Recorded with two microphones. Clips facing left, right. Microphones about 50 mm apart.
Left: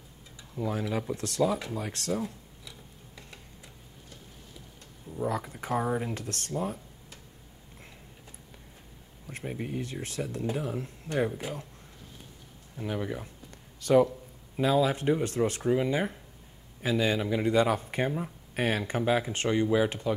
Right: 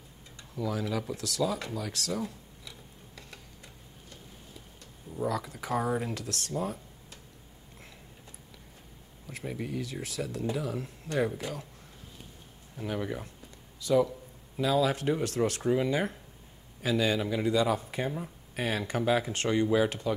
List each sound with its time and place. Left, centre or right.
0.6 s speech: left
5.3 s speech: left
5.8 s speech: centre
6.1 s speech: left
9.4 s speech: left
9.7 s speech: left
12.7 s speech: centre
13.7 s a man's voice: left
14.6 s speech: left
15.6 s speech: centre
15.9 s speech: centre
17.5 s speech: left; by 19.9 s centre